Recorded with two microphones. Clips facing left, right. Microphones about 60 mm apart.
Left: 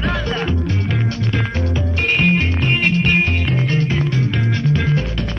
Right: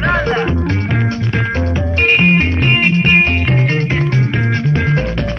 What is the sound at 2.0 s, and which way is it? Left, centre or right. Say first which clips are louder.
Music: right 5 dB; right.